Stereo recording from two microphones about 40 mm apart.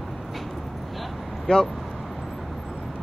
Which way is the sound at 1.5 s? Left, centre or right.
Left.